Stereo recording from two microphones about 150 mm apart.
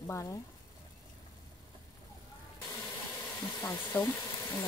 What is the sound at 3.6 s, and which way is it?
Speech, 15° left (ahead or behind).